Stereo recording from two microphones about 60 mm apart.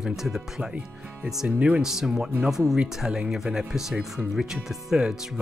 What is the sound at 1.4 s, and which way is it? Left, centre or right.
Speech, right.